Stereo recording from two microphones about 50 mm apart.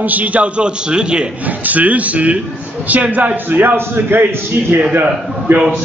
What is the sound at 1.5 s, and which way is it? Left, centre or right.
A man's voice, right.